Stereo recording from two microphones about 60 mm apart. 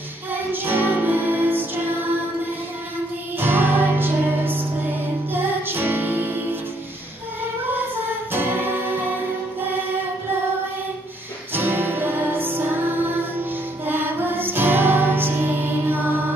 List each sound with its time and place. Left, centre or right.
0.3 s music: right
3.3 s music: right
8.3 s music: right
11.5 s music: right